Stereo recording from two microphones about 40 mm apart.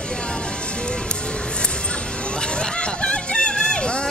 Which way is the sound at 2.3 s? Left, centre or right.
Left.